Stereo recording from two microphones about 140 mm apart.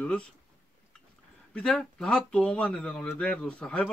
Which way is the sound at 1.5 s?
5° left (ahead or behind).